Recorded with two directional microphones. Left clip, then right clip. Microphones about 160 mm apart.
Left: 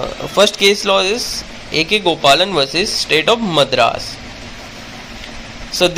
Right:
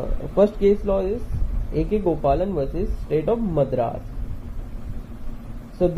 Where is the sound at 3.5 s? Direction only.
25° left (ahead or behind).